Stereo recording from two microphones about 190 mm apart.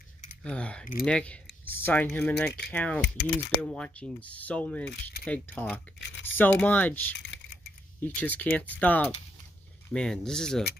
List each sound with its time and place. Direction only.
0.4 s speech: 5° left (ahead or behind)
5.9 s tearing: 65° left (ahead or behind)
6.3 s speech: 10° left (ahead or behind)